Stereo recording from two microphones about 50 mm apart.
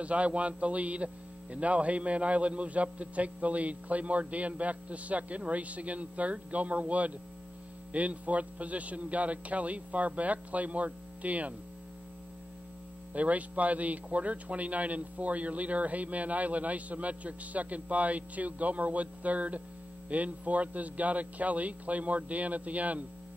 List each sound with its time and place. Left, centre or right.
0.0 s a man's voice: right
13.1 s a man's voice: right